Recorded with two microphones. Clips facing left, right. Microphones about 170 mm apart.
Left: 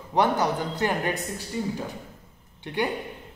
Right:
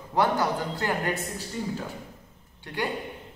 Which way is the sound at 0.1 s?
20° left (ahead or behind).